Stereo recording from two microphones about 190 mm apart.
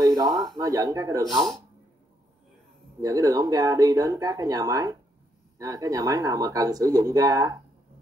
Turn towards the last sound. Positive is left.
turn(degrees=-20)  # may be behind; listen again after turning